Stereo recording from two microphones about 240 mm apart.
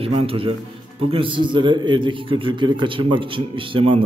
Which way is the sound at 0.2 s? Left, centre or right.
Right.